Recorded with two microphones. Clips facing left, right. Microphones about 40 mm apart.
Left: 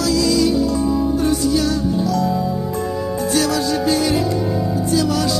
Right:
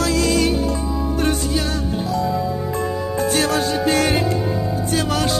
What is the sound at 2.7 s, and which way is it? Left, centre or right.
Music, right.